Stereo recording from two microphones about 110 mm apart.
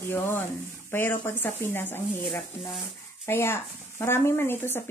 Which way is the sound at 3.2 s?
25° left (ahead or behind).